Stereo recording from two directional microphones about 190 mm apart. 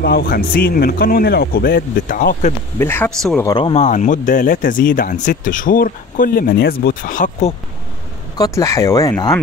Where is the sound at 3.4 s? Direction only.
25° left (ahead or behind); by 7.5 s 45° left (ahead or behind).